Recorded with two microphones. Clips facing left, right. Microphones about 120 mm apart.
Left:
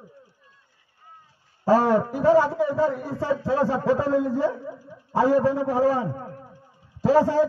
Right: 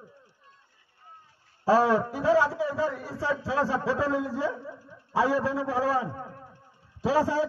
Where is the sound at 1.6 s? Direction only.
45° left (ahead or behind).